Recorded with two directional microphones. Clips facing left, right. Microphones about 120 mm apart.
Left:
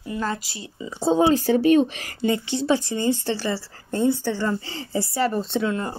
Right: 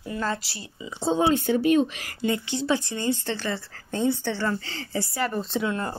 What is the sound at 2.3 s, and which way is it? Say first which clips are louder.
Speech: left 4 dB; 20° left (ahead or behind).